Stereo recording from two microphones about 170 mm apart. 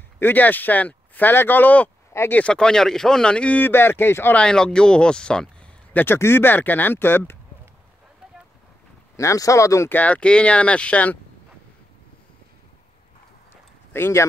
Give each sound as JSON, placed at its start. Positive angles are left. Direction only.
{"t": 0.2, "sound": "speech", "side_deg": 10}
{"t": 9.1, "sound": "speech", "side_deg": 20}
{"t": 13.9, "sound": "speech", "side_deg": 15}